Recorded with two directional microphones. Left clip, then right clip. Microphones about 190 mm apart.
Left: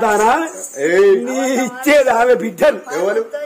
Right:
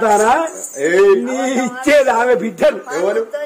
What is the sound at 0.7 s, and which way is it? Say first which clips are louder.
Speech: even; 15° left (ahead or behind).